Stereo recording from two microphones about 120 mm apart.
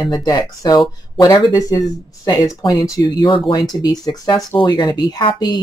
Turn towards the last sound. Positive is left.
turn(degrees=35)  # may be behind; listen again after turning